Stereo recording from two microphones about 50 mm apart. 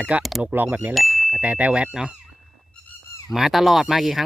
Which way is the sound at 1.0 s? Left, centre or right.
Centre.